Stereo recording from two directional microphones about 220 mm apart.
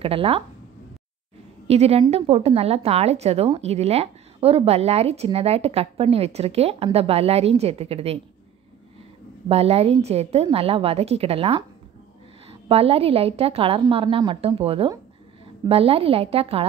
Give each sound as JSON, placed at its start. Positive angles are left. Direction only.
{"t": 0.0, "sound": "a woman's voice", "side_deg": -25}
{"t": 1.7, "sound": "a woman's voice", "side_deg": -30}
{"t": 9.5, "sound": "a woman's voice", "side_deg": -25}